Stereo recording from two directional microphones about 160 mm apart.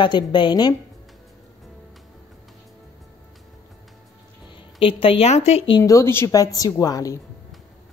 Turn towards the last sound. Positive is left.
turn(degrees=20)  # may be behind; listen again after turning